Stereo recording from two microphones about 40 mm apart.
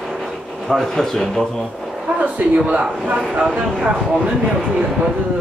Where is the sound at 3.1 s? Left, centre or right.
Right.